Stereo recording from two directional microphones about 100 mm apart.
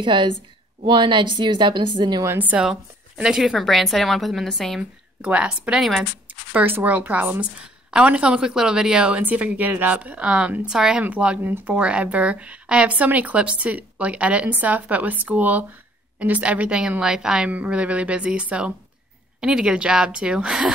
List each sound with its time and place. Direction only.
0.0 s a woman's voice: 55° right (ahead or behind)
2.2 s a woman's voice: 15° right (ahead or behind)
2.6 s a woman's voice: 5° right (ahead or behind)
5.2 s a woman's voice: 10° right (ahead or behind)
6.2 s a woman's voice: 15° right (ahead or behind)